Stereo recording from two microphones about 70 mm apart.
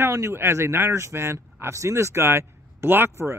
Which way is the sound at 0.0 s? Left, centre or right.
Right.